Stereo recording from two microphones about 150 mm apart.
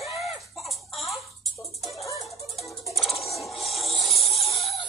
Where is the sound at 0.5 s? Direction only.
Centre (ahead or behind).